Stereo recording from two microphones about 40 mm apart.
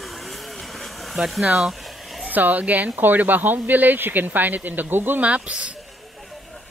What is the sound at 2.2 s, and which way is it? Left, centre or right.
Speech, right.